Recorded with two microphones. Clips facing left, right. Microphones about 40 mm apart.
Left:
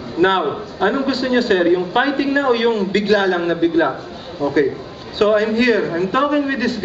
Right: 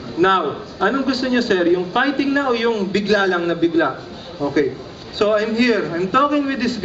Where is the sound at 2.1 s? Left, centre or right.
Left.